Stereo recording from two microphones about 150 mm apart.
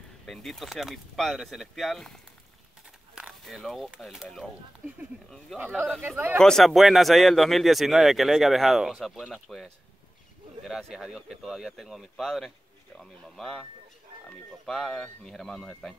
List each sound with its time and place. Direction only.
0.3 s speech: centre (ahead or behind)
3.2 s speech: centre (ahead or behind)
5.6 s speech: 10° right (ahead or behind)
6.4 s speech: centre (ahead or behind)
14.7 s speech: 5° left (ahead or behind)